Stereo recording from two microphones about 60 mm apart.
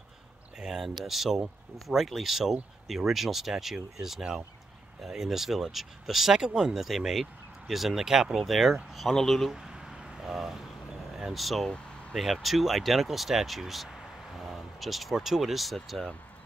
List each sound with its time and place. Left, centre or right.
0.6 s speech: centre
9.6 s vehicle: centre
11.1 s speech: centre